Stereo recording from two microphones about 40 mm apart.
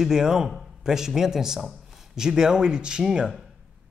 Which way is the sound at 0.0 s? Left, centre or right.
Centre.